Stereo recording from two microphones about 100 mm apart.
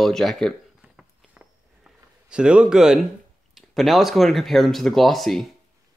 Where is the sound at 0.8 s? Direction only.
10° right (ahead or behind).